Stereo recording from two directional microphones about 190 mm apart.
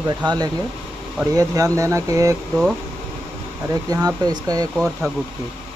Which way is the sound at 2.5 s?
Centre (ahead or behind).